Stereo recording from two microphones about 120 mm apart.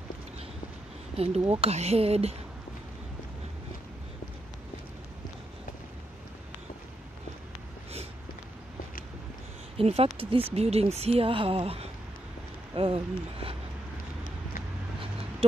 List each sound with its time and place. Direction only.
1.1 s speech: 55° right (ahead or behind)
9.8 s speech: 55° right (ahead or behind)